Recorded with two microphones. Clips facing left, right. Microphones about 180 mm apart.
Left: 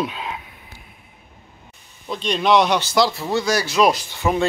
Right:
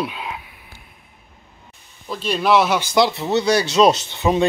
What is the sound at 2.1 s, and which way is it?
Speech, 5° right (ahead or behind).